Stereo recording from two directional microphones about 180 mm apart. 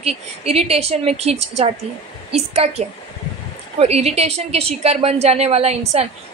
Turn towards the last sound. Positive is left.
turn(degrees=-35)  # may be behind; listen again after turning